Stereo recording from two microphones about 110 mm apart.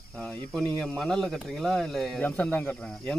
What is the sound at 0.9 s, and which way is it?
Speech, centre (ahead or behind).